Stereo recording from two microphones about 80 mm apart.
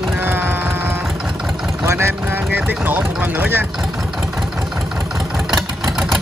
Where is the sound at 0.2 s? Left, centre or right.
Right.